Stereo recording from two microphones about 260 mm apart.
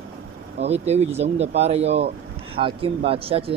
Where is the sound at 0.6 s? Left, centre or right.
Right.